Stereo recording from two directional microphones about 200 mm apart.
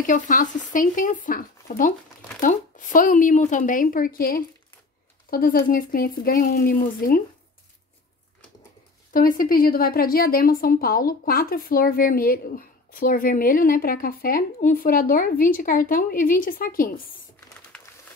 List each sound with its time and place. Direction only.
0.0 s a woman's voice: 40° left (ahead or behind)
9.1 s a woman's voice: 45° left (ahead or behind)